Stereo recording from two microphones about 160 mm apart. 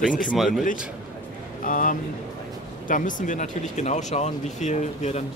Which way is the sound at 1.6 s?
55° left (ahead or behind).